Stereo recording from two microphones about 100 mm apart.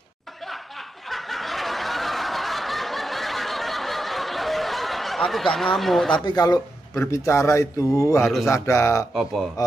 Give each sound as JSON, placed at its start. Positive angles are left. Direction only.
{"t": 1.1, "sound": "snicker", "side_deg": 0}
{"t": 6.2, "sound": "speech", "side_deg": 40}
{"t": 9.1, "sound": "speech", "side_deg": 0}